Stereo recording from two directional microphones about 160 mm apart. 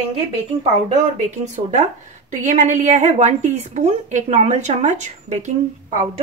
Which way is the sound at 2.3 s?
45° right (ahead or behind).